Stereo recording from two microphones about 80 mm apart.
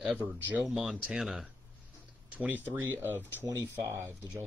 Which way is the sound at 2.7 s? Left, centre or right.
Right.